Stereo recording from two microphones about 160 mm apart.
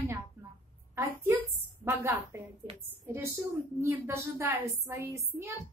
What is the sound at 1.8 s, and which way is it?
A woman's voice, 15° right (ahead or behind).